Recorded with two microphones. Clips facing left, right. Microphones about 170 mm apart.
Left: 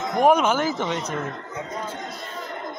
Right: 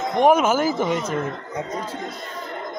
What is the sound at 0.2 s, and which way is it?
Speech, 5° right (ahead or behind).